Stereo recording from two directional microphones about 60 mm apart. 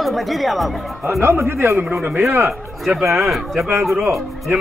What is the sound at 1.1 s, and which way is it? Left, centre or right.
Speech, right.